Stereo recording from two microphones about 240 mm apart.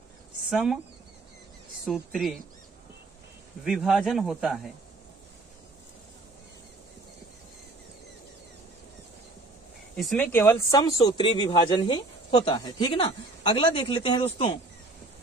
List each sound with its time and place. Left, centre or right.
0.5 s speech: centre
1.9 s speech: centre
3.6 s speech: centre
9.9 s speech: centre; by 14.6 s left